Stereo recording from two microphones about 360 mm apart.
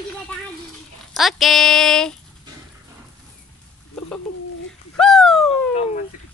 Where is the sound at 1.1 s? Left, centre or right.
Centre.